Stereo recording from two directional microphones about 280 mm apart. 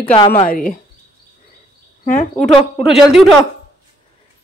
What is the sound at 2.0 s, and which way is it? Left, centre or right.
Speech, left.